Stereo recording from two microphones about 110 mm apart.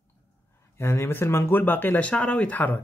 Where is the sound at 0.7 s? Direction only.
25° left (ahead or behind).